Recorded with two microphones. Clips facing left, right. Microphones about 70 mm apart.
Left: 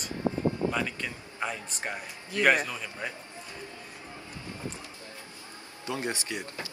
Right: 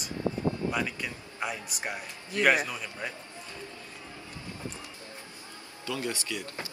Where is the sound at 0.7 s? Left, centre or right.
Centre.